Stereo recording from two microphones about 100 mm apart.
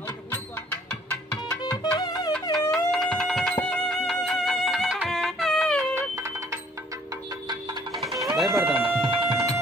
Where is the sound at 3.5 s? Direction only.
10° left (ahead or behind); by 5.4 s 10° right (ahead or behind).